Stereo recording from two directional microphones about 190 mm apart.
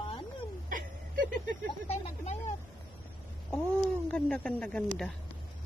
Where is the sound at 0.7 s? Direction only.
45° right (ahead or behind).